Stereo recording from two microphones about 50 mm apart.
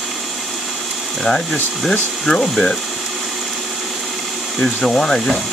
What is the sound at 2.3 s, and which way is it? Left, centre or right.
Speech, centre.